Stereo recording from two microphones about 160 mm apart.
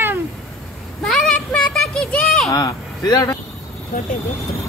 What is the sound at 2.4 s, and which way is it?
Speech, 25° left (ahead or behind).